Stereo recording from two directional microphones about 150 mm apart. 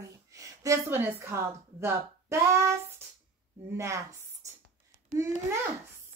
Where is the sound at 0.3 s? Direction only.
20° right (ahead or behind).